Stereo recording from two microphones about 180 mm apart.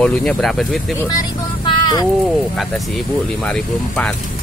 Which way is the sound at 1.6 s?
25° left (ahead or behind).